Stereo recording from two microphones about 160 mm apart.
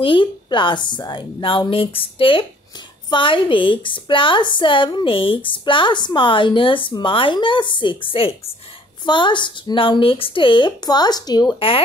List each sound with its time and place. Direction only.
0.0 s a woman's voice: 30° left (ahead or behind)